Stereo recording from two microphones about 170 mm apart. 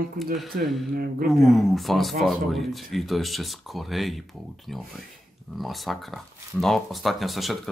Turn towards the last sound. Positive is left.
turn(degrees=0)  # may be behind; listen again after turning